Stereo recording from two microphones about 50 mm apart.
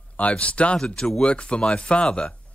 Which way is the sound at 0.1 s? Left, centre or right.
Left.